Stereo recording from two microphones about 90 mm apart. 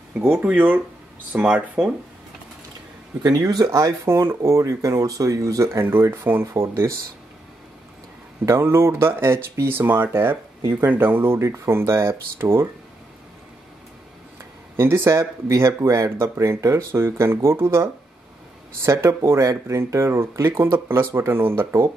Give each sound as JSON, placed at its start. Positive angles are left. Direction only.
{"t": 0.4, "sound": "speech", "side_deg": -15}
{"t": 3.2, "sound": "speech", "side_deg": -45}
{"t": 8.5, "sound": "speech", "side_deg": -30}
{"t": 14.8, "sound": "speech", "side_deg": -30}